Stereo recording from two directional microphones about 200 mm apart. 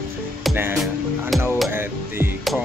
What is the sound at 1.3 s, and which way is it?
Speech, centre (ahead or behind).